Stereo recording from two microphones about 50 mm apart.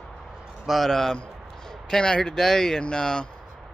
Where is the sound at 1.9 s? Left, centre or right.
Centre.